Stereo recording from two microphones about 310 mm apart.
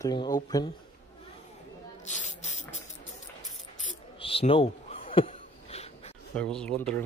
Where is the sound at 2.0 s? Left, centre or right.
Left.